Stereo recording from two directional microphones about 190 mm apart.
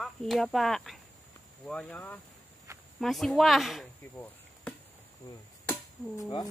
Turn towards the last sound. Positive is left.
turn(degrees=20)  # may be behind; listen again after turning